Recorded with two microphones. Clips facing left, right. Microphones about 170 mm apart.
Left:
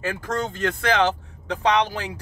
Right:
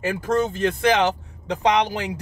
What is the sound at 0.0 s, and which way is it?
Speech, 15° right (ahead or behind).